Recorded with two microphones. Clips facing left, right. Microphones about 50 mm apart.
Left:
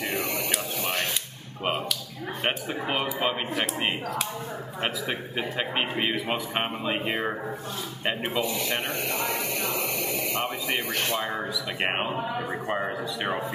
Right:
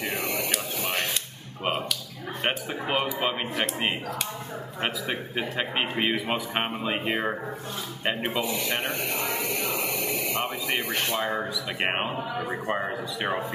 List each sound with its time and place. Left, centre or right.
0.2 s a sound: centre
2.4 s a man's voice: centre
10.9 s speech: centre
11.2 s a man's voice: centre